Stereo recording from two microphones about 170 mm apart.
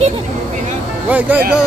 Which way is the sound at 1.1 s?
10° right (ahead or behind).